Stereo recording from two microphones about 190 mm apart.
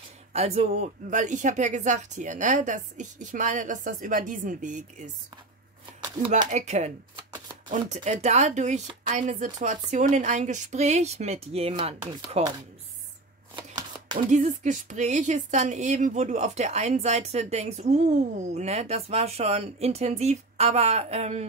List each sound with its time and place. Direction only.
0.3 s speech: 35° right (ahead or behind)
6.5 s speech: 35° right (ahead or behind)
13.6 s shuffling cards: 20° right (ahead or behind)
14.3 s speech: 40° right (ahead or behind)